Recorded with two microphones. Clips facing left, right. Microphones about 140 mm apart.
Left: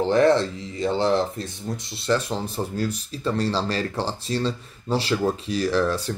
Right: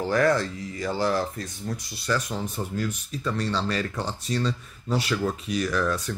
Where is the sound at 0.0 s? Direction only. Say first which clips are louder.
Left 4 dB; 25° left (ahead or behind).